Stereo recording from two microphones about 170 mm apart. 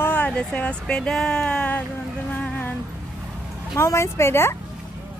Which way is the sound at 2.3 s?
10° left (ahead or behind).